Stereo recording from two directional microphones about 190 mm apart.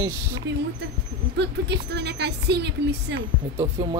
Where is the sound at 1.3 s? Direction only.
65° right (ahead or behind).